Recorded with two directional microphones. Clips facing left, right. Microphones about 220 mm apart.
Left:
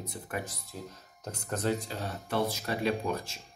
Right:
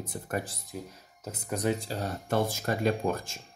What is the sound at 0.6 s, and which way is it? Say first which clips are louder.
Speech: right 3 dB; 10° right (ahead or behind).